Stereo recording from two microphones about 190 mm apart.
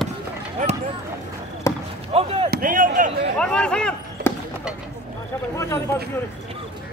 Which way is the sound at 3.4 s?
5° left (ahead or behind).